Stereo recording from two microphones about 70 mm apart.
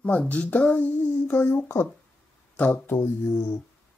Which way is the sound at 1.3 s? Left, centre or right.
Left.